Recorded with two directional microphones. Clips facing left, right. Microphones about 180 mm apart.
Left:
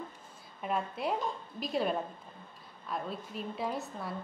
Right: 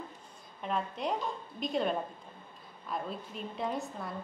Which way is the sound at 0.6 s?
5° left (ahead or behind).